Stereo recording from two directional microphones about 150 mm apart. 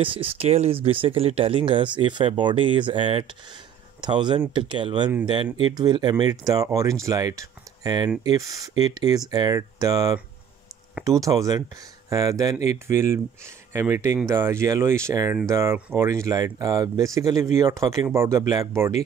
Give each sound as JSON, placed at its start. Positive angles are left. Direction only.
{"t": 0.0, "sound": "speech", "side_deg": -35}